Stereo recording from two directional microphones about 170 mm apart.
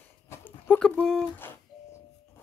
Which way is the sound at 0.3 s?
10° left (ahead or behind).